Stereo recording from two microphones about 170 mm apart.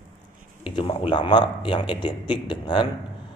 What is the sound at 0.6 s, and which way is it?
Speech, 30° left (ahead or behind).